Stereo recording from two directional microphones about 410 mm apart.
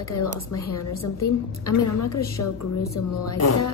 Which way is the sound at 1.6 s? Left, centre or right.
Left.